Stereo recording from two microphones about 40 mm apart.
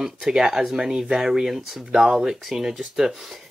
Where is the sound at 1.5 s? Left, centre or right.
Centre.